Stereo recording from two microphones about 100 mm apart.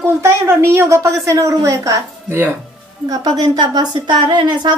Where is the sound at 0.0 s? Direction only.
25° right (ahead or behind).